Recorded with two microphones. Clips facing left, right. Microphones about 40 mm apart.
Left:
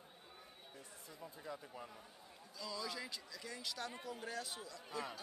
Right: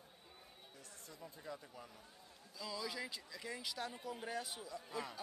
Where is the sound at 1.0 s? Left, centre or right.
Centre.